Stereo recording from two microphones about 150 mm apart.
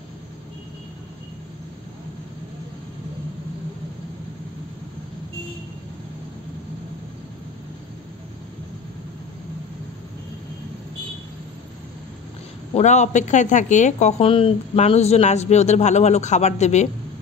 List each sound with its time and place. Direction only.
12.7 s a woman's voice: 50° left (ahead or behind)